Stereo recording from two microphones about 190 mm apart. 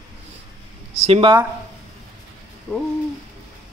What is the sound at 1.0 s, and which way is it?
Speech, 30° right (ahead or behind).